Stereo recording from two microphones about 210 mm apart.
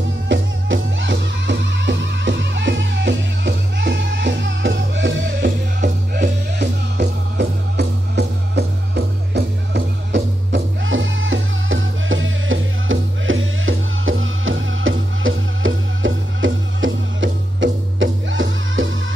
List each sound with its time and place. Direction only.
0.3 s music: 60° right (ahead or behind)
5.8 s music: 45° right (ahead or behind); by 18.9 s 65° right (ahead or behind)